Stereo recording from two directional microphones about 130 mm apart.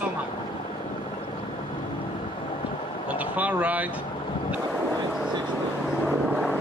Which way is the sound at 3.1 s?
10° right (ahead or behind).